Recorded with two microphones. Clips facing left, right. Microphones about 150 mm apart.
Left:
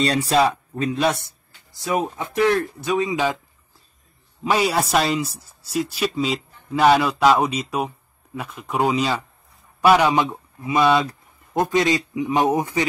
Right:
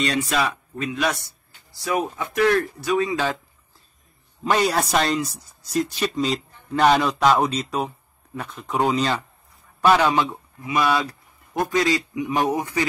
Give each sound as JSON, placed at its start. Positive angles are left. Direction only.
{"t": 0.0, "sound": "speech", "side_deg": 35}
{"t": 4.5, "sound": "a man's voice", "side_deg": 5}